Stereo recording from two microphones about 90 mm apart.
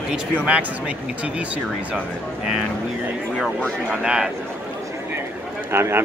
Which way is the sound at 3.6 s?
15° left (ahead or behind).